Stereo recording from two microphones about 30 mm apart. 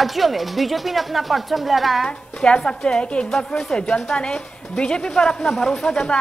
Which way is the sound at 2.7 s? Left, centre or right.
Left.